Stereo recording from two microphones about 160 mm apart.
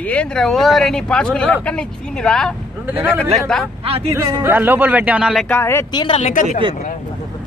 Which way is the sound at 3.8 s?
35° right (ahead or behind).